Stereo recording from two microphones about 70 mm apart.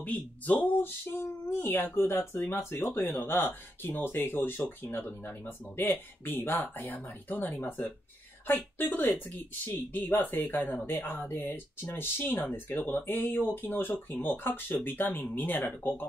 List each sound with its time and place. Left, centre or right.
0.0 s speech: left
10.9 s speech: left